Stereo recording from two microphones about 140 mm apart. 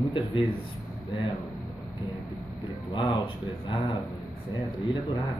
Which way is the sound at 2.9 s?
35° left (ahead or behind).